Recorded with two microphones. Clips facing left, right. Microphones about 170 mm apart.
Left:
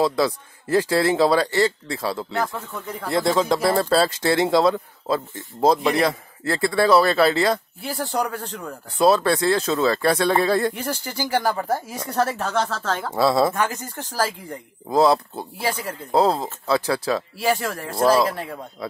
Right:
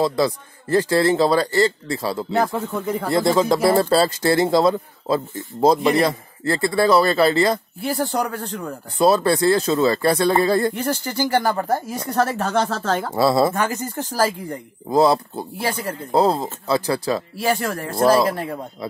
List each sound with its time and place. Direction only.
0.0 s speech: 5° left (ahead or behind)
2.3 s speech: 30° right (ahead or behind)
3.1 s speech: centre (ahead or behind)